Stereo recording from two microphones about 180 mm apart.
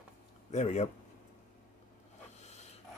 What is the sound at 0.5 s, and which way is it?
Speech, 40° left (ahead or behind).